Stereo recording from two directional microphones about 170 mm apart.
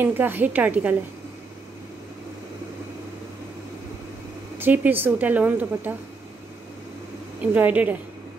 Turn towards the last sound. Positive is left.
turn(degrees=-10)  # may be behind; listen again after turning